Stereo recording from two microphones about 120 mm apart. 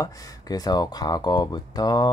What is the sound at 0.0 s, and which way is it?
Speech, 30° left (ahead or behind).